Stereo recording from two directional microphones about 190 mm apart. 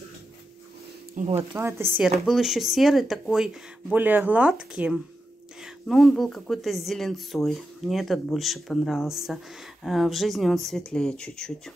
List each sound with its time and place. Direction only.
1.1 s speech: 35° right (ahead or behind)
1.5 s speech: 10° right (ahead or behind)
2.2 s speech: centre (ahead or behind)